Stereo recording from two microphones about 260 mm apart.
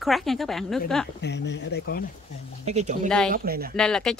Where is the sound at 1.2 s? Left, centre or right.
Left.